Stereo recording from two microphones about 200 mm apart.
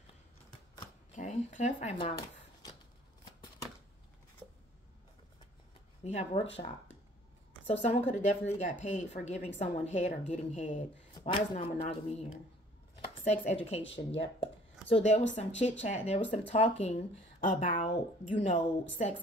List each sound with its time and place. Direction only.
1.1 s speech: 35° left (ahead or behind)
6.0 s a woman's voice: 35° left (ahead or behind)
7.8 s a woman's voice: 35° left (ahead or behind)
11.1 s a woman's voice: 25° left (ahead or behind)